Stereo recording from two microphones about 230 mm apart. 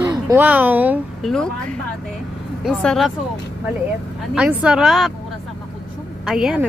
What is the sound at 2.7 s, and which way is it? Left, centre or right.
Speech, centre.